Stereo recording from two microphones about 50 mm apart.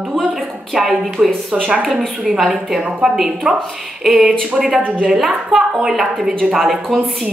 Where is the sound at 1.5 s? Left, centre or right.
Centre.